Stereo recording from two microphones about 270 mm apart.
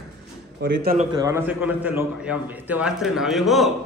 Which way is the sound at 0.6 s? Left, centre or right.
Right.